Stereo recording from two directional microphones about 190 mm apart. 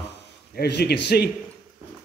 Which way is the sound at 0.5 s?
60° left (ahead or behind).